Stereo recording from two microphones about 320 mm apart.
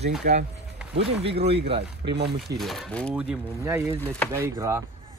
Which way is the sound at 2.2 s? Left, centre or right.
Right.